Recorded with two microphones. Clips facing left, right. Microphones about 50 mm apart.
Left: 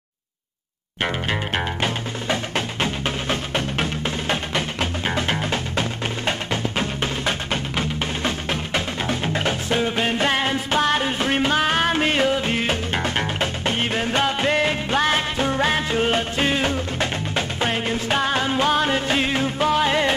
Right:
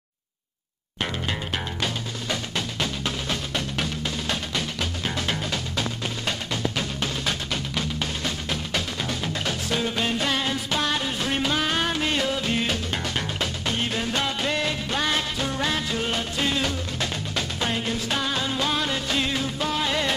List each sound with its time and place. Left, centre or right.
1.0 s music: left